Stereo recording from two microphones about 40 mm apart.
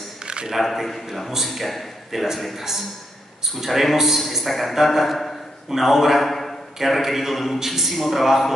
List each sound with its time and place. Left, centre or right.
0.2 s a sound: right
0.5 s a man's voice: centre
5.7 s a man's voice: centre